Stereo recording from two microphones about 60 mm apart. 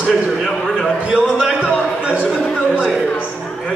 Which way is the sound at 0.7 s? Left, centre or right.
Centre.